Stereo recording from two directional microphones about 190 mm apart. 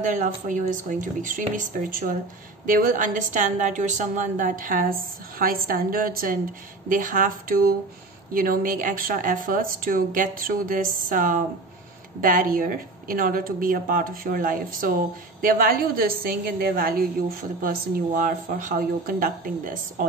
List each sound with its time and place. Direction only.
0.0 s speech: 40° right (ahead or behind)